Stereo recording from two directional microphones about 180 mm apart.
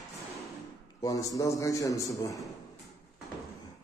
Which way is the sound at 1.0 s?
20° left (ahead or behind).